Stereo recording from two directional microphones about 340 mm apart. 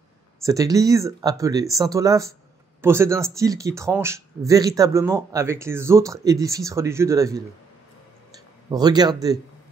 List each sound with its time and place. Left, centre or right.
0.4 s speech: centre
8.6 s speech: centre